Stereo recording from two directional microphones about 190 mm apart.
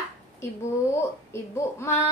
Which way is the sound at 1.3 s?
15° left (ahead or behind).